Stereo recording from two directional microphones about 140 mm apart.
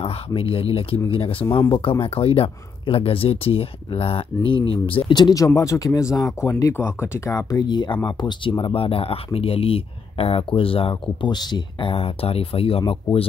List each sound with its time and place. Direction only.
0.0 s speech: 40° left (ahead or behind)